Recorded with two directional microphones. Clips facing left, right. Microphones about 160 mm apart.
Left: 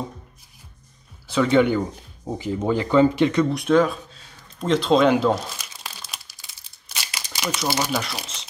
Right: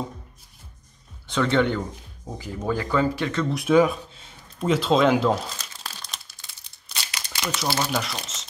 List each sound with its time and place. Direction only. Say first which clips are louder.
1.2 s speech: left 4 dB; 5° left (ahead or behind)
2.2 s speech: left 5 dB; 20° left (ahead or behind)
3.5 s speech: even; 5° right (ahead or behind)
5.5 s crumpling: even; 10° left (ahead or behind)
7.9 s speech: left 1 dB; 5° left (ahead or behind)